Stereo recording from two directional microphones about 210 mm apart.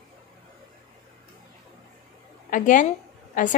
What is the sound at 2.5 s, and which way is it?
Speech, 35° left (ahead or behind).